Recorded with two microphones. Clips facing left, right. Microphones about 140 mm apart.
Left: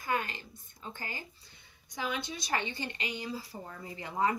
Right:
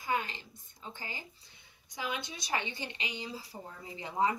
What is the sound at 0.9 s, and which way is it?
Speech, 55° left (ahead or behind).